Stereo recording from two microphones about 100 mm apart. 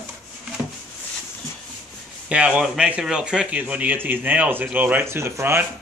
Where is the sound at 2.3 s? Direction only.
10° right (ahead or behind).